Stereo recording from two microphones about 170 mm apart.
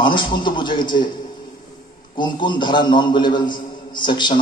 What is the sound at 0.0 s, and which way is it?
A man's voice, 30° left (ahead or behind).